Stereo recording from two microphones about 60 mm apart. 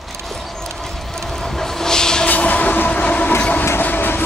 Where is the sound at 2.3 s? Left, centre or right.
Left.